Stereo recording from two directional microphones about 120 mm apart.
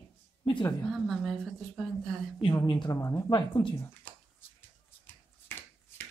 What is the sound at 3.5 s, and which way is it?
Speech, 45° left (ahead or behind).